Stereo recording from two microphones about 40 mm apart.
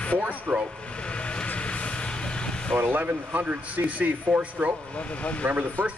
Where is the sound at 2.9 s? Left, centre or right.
Right.